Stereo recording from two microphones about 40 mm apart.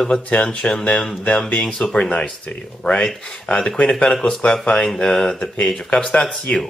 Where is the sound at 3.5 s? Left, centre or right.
Left.